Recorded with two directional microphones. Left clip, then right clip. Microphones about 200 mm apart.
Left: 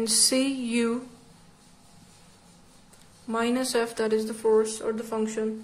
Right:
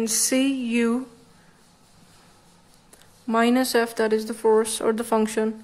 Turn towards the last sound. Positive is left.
turn(degrees=-20)  # may be behind; listen again after turning